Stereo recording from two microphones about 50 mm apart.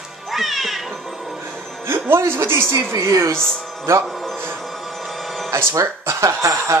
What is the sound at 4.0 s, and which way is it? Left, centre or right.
Speech, centre.